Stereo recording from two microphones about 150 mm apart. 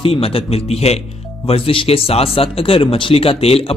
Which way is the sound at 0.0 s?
40° left (ahead or behind).